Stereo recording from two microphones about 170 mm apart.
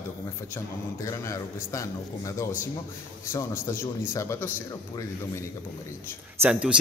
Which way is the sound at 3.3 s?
15° left (ahead or behind).